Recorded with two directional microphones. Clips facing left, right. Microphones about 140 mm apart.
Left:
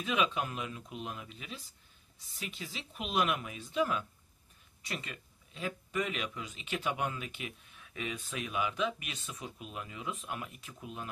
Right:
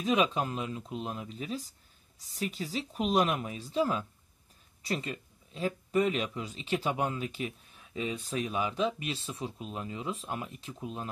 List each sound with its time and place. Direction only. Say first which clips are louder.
0.0 s speech: right 4 dB; 35° right (ahead or behind)